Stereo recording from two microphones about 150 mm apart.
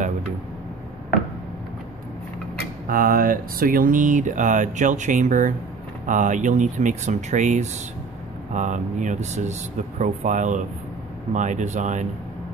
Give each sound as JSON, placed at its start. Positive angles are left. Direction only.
{"t": 2.9, "sound": "speech", "side_deg": -75}